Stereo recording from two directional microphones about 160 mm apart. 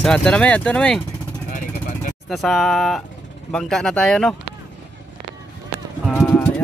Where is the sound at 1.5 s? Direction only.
55° left (ahead or behind).